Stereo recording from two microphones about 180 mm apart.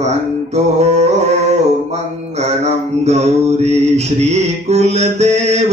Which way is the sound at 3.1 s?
35° right (ahead or behind).